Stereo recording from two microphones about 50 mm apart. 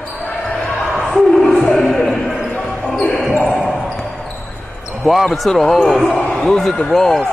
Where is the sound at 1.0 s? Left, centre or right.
Centre.